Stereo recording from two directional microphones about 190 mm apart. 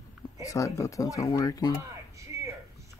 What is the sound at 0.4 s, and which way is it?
Speech, 15° left (ahead or behind).